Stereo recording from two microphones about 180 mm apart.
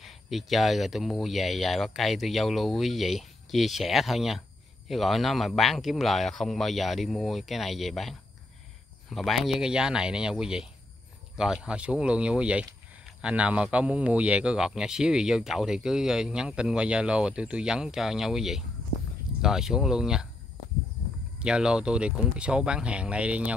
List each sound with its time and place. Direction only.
0.0 s speech: centre (ahead or behind)
21.4 s speech: 5° right (ahead or behind)